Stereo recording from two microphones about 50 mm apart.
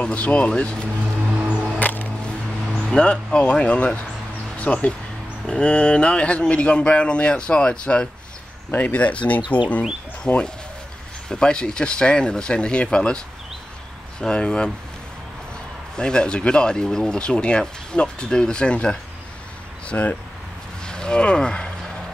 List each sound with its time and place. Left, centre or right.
0.0 s speech: left
1.8 s music: left
2.8 s speech: centre
10.2 s speech: centre
14.2 s speech: centre
16.0 s speech: centre
20.8 s speech: centre